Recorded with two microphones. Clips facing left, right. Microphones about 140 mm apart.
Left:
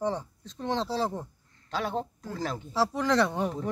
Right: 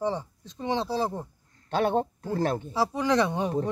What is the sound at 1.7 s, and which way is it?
Speech, 60° right (ahead or behind).